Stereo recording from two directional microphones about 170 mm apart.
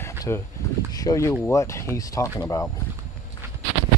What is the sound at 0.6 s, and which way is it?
Speech, 15° left (ahead or behind).